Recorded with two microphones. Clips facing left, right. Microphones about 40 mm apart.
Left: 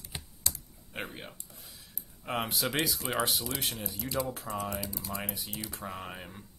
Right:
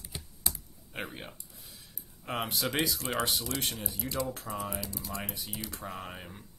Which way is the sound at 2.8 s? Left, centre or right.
Centre.